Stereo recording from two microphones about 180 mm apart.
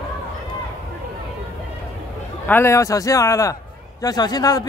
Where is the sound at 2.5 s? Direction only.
15° left (ahead or behind).